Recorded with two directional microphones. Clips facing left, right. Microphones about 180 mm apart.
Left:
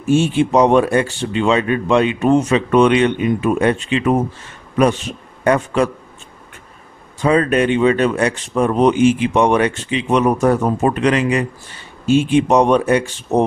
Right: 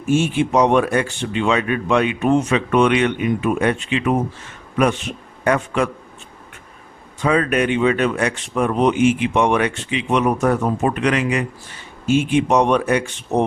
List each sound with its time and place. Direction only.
0.1 s a man's voice: 30° left (ahead or behind)
7.2 s speech: 35° left (ahead or behind)